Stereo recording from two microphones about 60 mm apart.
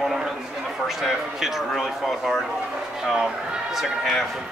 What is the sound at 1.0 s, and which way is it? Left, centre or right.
A man's voice, centre.